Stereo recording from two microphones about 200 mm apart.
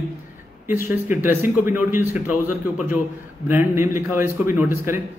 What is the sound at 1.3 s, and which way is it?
Speech, 10° right (ahead or behind).